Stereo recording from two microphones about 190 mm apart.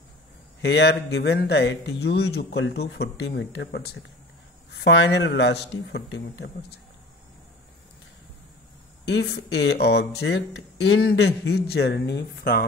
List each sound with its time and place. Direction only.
0.6 s speech: 60° left (ahead or behind)
9.0 s speech: 65° left (ahead or behind)